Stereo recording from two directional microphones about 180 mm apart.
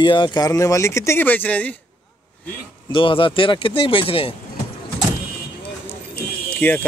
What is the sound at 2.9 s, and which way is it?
Speech, 30° left (ahead or behind).